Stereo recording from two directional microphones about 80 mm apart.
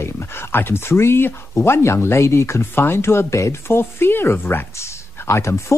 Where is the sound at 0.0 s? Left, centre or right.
Left.